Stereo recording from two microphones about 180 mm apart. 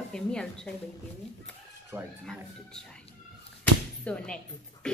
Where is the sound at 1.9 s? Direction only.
15° right (ahead or behind).